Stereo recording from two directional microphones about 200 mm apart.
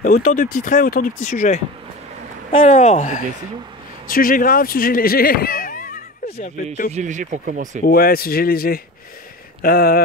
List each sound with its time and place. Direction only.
0.0 s speech: 45° left (ahead or behind)
6.9 s speech: 35° right (ahead or behind)
7.8 s speech: 50° left (ahead or behind)